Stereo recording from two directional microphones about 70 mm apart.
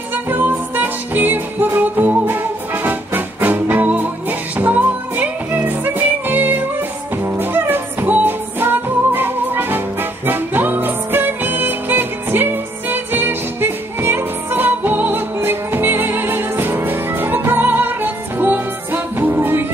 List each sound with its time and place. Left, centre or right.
0.1 s music: right